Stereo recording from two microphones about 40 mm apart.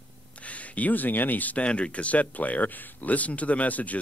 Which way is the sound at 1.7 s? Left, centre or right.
Left.